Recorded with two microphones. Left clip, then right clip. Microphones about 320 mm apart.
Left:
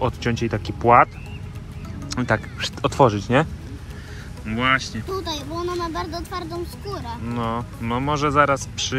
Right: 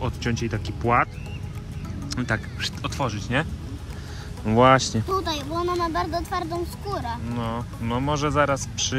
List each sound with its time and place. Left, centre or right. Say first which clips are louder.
0.0 s speech: left 5 dB; centre
4.6 s speech: right 4 dB; centre
5.0 s speech: right 2 dB; centre